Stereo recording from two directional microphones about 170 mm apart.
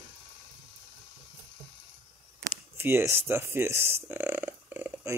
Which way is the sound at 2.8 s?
15° right (ahead or behind).